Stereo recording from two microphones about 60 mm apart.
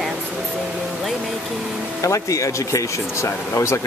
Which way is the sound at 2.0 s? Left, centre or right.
Left.